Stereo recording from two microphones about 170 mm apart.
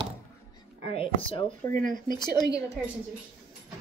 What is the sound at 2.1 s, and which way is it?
Speech, 25° left (ahead or behind).